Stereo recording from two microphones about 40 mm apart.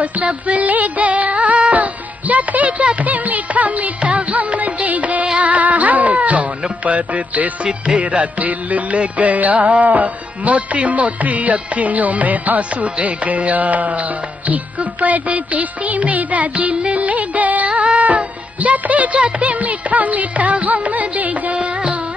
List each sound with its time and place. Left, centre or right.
0.0 s music: right
7.6 s music: right